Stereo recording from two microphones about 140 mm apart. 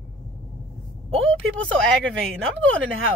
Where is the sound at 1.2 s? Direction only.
10° left (ahead or behind).